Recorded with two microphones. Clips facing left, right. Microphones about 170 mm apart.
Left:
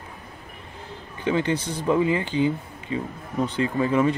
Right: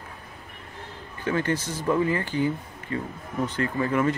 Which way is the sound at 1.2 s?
20° left (ahead or behind).